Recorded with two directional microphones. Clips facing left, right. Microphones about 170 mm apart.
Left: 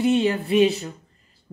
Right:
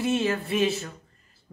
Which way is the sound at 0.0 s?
20° left (ahead or behind).